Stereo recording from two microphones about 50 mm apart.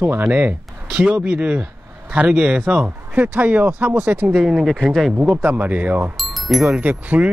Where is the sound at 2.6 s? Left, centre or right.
Right.